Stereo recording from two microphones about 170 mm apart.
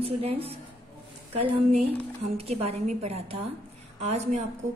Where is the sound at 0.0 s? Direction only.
35° right (ahead or behind).